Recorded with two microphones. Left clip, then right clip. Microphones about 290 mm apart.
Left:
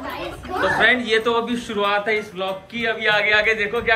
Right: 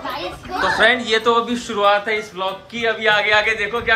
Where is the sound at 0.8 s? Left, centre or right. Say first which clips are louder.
Right 2 dB; centre.